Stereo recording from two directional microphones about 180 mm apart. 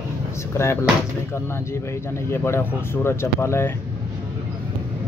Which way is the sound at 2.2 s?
15° left (ahead or behind).